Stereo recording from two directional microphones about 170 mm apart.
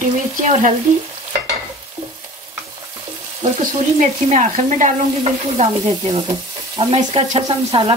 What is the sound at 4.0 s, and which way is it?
Stir, 45° right (ahead or behind).